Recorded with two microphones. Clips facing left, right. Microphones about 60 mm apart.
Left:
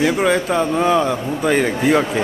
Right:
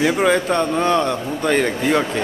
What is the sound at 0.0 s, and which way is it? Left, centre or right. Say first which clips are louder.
A man's voice: even; centre.